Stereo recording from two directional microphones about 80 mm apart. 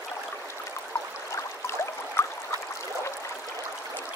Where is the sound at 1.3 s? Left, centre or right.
Left.